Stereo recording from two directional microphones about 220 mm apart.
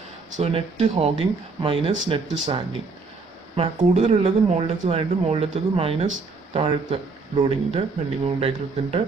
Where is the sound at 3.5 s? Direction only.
30° right (ahead or behind).